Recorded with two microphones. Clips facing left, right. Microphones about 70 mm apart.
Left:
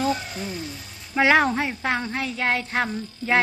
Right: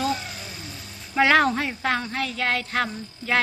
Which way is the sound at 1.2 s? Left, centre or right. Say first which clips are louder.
Even; centre.